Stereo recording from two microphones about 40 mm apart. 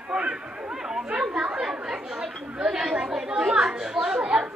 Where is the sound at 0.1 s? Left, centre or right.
Right.